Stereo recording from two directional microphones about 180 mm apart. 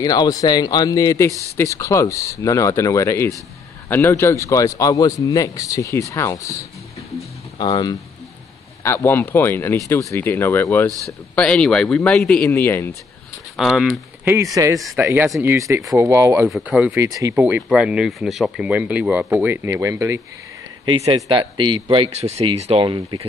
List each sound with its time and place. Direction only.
0.0 s a man's voice: 20° left (ahead or behind)
13.6 s speech: centre (ahead or behind)
14.2 s speech: 15° right (ahead or behind)
16.4 s speech: 5° right (ahead or behind)
20.8 s speech: 30° right (ahead or behind)